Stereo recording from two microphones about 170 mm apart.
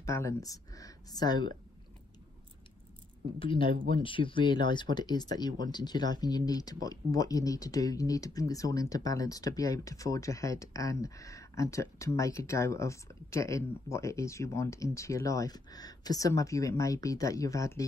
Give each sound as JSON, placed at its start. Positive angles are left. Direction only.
{"t": 0.0, "sound": "speech", "side_deg": 15}
{"t": 3.3, "sound": "speech", "side_deg": 30}